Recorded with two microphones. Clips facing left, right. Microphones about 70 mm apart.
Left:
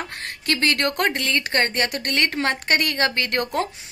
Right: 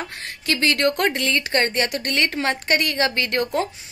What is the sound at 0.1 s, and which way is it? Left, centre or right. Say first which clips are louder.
A woman's voice: even; left.